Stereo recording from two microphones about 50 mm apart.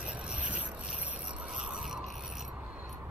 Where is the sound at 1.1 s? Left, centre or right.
Centre.